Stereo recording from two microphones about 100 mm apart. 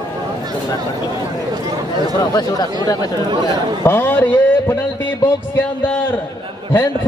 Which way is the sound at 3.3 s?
45° right (ahead or behind).